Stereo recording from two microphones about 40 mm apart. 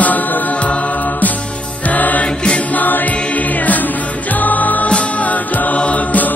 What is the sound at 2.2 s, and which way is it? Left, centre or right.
Mantra, left.